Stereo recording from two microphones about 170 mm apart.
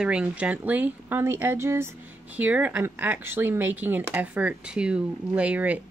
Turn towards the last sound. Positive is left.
turn(degrees=-10)  # may be behind; listen again after turning